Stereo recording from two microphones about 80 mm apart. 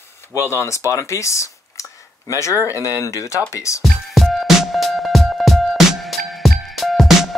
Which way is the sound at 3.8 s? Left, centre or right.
Centre.